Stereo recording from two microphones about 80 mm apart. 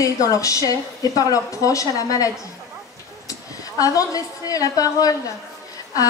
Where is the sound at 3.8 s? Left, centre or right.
Left.